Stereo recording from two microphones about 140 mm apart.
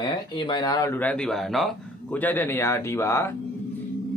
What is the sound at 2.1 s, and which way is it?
Music, 15° left (ahead or behind).